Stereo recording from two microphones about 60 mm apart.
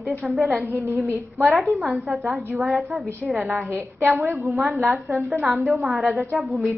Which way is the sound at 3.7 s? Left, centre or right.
Right.